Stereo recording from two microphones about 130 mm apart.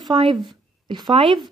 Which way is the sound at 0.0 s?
40° right (ahead or behind).